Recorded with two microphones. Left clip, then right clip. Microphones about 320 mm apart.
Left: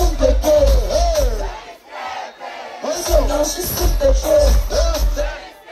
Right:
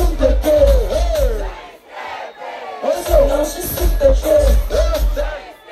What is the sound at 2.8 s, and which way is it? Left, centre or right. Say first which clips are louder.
Music: right 4 dB; centre.